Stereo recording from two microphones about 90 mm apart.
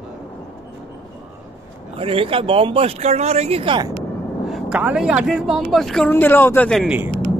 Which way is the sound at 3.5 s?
75° right (ahead or behind).